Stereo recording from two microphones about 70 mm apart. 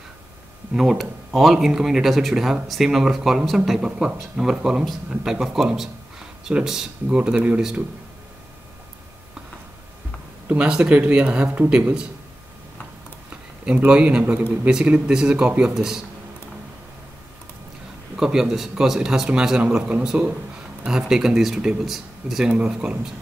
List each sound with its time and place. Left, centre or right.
0.7 s speech: centre
7.2 s a man's voice: centre
10.5 s speech: centre
13.7 s a man's voice: centre
14.7 s speech: centre
18.1 s a man's voice: centre
22.5 s speech: centre